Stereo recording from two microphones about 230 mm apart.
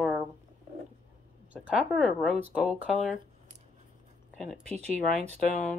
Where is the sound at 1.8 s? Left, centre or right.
Centre.